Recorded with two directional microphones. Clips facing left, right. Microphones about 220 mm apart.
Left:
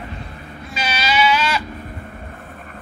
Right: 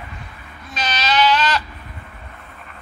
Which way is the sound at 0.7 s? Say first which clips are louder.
Even; 10° left (ahead or behind).